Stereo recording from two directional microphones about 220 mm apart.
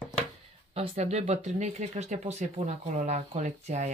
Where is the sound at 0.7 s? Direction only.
30° right (ahead or behind).